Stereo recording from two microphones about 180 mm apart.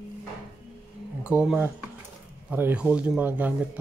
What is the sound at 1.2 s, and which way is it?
Speech, 5° right (ahead or behind).